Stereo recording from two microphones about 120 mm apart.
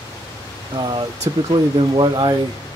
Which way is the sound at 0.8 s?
40° right (ahead or behind).